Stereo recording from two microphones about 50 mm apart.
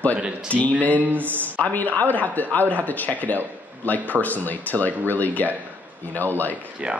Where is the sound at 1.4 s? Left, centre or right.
Left.